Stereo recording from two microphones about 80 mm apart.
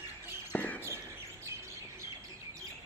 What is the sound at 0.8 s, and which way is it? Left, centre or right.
Chirp, right.